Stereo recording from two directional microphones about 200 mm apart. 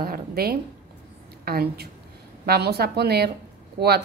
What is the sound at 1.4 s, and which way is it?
Speech, 50° right (ahead or behind).